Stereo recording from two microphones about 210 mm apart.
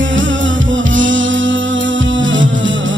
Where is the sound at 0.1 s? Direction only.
65° right (ahead or behind).